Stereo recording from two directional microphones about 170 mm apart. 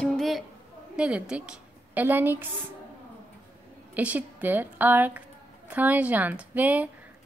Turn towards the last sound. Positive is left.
turn(degrees=-10)  # may be behind; listen again after turning